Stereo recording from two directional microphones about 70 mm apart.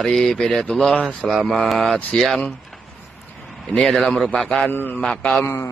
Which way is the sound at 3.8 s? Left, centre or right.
Centre.